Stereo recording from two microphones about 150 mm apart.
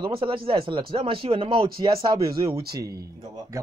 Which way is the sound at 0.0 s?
35° right (ahead or behind).